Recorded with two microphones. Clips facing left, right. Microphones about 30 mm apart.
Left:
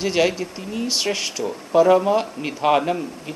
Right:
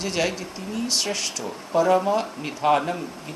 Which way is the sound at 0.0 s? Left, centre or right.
Centre.